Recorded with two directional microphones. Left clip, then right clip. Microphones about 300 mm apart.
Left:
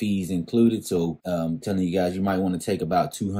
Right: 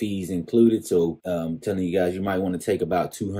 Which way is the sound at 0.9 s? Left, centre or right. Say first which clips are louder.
Right 3 dB; centre.